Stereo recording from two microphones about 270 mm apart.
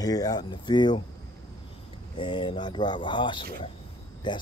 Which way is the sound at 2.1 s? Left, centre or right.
Centre.